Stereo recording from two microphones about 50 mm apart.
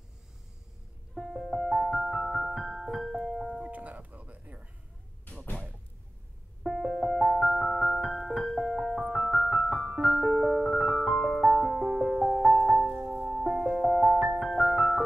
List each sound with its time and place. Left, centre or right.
1.1 s piano: centre
3.6 s a sound: right
6.6 s music: centre
8.5 s piano: centre
13.3 s music: centre